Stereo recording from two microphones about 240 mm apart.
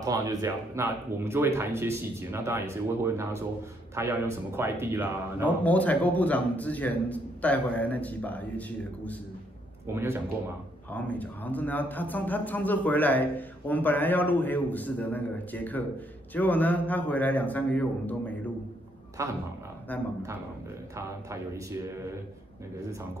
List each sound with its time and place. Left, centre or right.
0.0 s speech: centre
5.6 s a man's voice: centre
9.9 s speech: centre
10.9 s a man's voice: centre
19.2 s speech: centre
19.9 s a man's voice: centre
20.9 s speech: centre